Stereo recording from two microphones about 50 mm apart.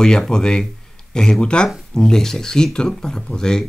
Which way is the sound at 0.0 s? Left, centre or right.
Centre.